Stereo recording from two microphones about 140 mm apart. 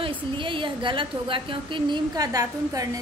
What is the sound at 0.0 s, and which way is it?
A woman's voice, 35° right (ahead or behind).